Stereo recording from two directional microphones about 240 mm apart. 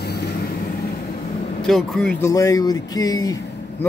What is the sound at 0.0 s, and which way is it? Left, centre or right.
Vehicle, left.